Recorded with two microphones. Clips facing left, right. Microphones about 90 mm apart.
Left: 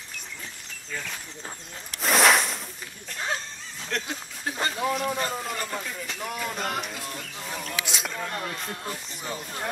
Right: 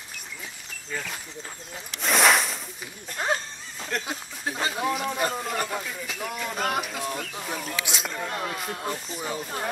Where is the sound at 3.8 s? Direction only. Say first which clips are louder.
Right 1 dB; 5° right (ahead or behind).